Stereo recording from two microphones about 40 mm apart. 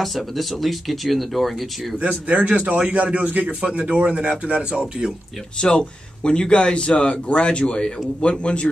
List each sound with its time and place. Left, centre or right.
0.0 s speech: centre
2.0 s speech: right
3.6 s speech: right
5.6 s speech: left